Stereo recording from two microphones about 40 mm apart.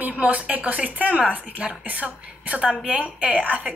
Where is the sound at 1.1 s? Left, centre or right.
Right.